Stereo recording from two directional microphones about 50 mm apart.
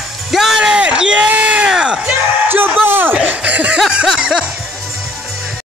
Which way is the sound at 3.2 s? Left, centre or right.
Right.